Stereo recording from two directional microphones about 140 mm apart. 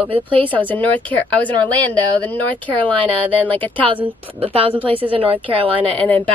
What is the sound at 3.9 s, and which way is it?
A woman's voice, 40° right (ahead or behind).